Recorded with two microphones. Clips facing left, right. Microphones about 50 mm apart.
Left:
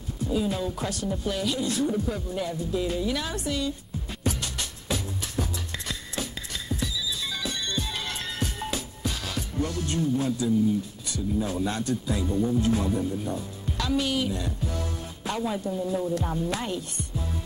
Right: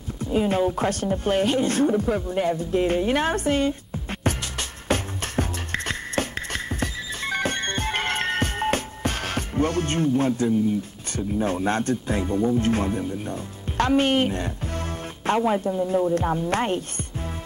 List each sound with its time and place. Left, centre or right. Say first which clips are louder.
0.2 s music: right 6 dB; right
11.1 s speech: right 3 dB; right
16.4 s music: right 6 dB; right